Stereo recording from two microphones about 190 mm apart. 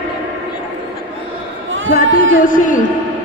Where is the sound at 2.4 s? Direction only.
45° left (ahead or behind).